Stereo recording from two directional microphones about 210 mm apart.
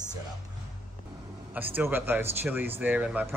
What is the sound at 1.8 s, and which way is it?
Speech, 10° right (ahead or behind).